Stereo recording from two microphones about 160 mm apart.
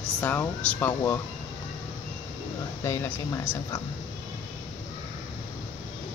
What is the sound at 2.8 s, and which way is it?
Speech, 15° left (ahead or behind).